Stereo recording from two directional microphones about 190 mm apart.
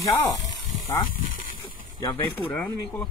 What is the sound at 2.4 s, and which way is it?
Speech, 10° left (ahead or behind).